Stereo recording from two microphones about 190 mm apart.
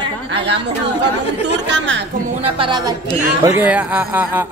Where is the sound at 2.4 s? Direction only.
30° right (ahead or behind).